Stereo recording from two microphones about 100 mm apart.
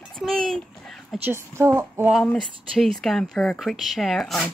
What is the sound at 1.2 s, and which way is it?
Speech, 25° right (ahead or behind).